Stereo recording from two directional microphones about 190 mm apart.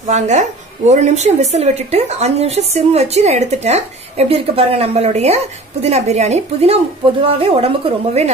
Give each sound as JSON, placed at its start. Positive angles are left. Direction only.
{"t": 0.0, "sound": "a woman's voice", "side_deg": -40}